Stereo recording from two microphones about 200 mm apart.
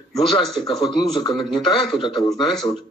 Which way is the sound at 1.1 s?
20° left (ahead or behind).